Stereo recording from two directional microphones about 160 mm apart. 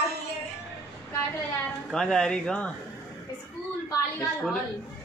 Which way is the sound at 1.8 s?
5° left (ahead or behind).